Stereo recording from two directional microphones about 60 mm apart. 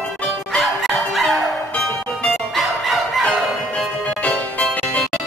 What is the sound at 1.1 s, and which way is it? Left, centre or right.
Music, centre.